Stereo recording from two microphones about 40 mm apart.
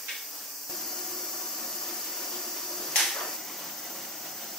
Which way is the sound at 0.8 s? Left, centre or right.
Centre.